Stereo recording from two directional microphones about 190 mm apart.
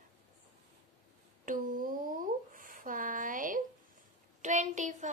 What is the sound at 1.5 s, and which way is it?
A child's voice, 45° right (ahead or behind).